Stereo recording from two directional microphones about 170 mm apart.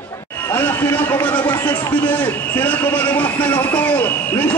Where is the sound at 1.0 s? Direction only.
10° left (ahead or behind).